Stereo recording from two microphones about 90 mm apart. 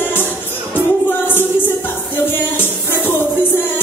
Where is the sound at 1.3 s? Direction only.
20° left (ahead or behind).